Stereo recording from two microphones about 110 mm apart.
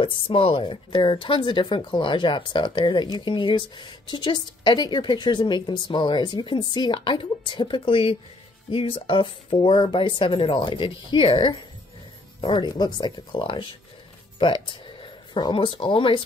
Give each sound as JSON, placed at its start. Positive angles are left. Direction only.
{"t": 0.0, "sound": "a woman's voice", "side_deg": 55}